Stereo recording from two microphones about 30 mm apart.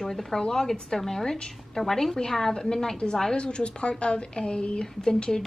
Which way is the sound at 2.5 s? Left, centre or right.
Left.